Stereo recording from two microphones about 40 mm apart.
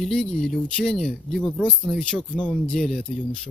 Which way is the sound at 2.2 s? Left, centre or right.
Left.